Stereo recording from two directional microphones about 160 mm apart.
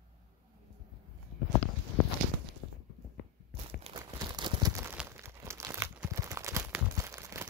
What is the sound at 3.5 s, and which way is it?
Crumpling, 40° right (ahead or behind).